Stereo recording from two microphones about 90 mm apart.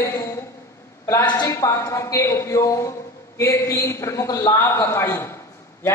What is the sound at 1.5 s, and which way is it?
A man's voice, 30° left (ahead or behind).